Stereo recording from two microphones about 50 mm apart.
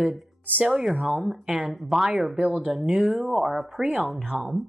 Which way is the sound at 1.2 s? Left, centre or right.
Centre.